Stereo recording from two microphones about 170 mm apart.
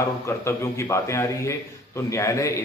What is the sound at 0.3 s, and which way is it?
A man's voice, 15° left (ahead or behind).